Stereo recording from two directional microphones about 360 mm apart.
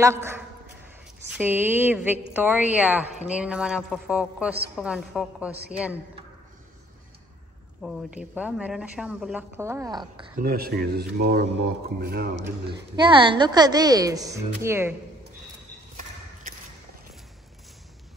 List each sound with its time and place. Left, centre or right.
0.0 s a woman's voice: centre
1.4 s speech: centre
7.8 s speech: centre
10.4 s speech: right
12.9 s a woman's voice: centre